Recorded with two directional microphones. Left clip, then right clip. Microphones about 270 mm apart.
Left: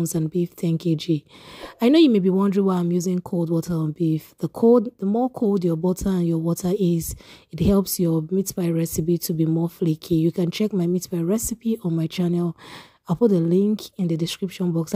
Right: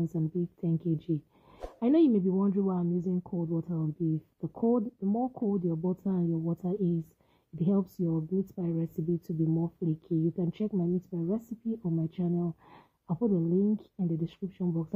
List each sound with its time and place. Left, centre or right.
0.1 s speech: left